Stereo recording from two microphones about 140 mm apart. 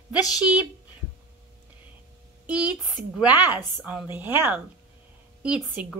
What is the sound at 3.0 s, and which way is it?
A woman's voice, 10° right (ahead or behind).